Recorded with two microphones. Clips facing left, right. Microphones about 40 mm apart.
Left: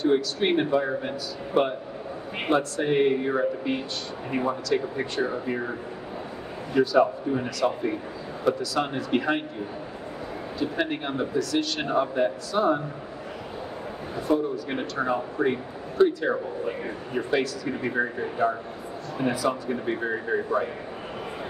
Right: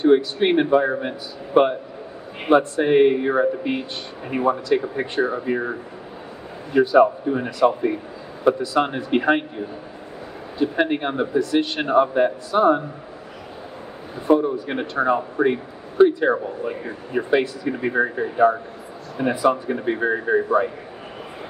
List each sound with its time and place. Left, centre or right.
0.0 s a man's voice: right
10.6 s a man's voice: right
14.2 s a man's voice: right